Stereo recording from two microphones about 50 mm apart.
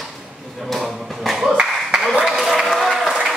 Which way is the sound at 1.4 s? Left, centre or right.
Centre.